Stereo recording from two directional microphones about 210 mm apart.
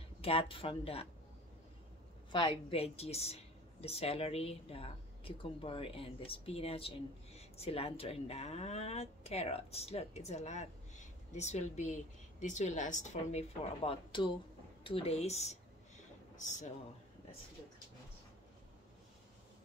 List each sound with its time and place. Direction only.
0.2 s a woman's voice: 25° left (ahead or behind)
2.3 s a woman's voice: 25° left (ahead or behind)